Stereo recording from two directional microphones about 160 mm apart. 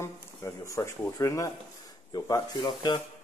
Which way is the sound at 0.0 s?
20° left (ahead or behind).